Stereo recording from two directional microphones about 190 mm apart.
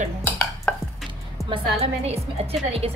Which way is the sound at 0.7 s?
5° left (ahead or behind).